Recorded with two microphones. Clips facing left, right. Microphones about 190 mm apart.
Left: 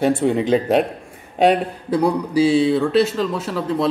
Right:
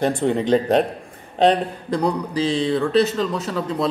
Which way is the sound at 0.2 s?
5° left (ahead or behind).